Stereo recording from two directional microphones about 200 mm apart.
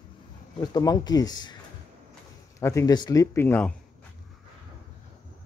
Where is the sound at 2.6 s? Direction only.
15° left (ahead or behind).